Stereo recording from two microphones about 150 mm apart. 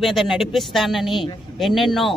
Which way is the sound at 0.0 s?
Centre (ahead or behind).